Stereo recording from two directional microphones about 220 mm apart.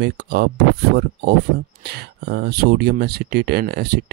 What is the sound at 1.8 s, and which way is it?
Speech, 45° right (ahead or behind).